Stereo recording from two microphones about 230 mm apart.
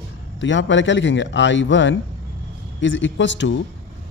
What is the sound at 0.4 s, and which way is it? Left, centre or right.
Speech, left.